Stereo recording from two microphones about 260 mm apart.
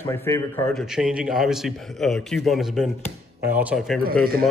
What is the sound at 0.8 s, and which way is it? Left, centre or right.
A man's voice, centre.